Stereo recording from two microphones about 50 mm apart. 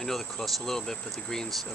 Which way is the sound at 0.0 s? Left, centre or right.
Centre.